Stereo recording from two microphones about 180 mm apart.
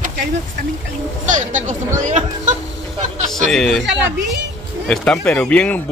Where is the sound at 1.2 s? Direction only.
45° right (ahead or behind).